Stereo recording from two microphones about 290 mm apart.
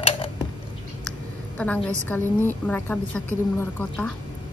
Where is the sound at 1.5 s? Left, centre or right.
Centre.